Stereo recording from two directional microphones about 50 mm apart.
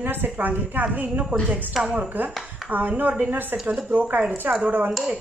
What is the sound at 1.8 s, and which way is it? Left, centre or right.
Speech, centre.